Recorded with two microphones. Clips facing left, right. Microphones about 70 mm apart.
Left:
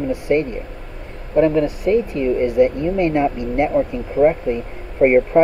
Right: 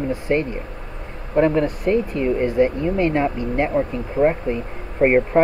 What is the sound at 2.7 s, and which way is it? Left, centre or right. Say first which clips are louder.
Speech: left 2 dB; centre.